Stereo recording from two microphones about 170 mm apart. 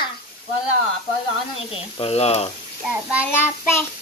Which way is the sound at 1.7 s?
35° left (ahead or behind).